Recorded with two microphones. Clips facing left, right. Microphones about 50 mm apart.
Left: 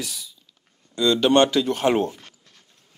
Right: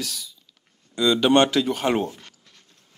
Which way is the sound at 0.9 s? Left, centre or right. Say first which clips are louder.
Even; centre.